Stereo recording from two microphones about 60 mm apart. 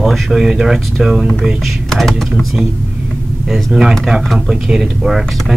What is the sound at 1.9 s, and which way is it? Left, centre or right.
Speech, centre.